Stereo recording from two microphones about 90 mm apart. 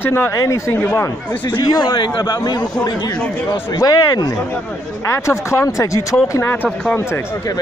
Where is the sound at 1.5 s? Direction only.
45° left (ahead or behind).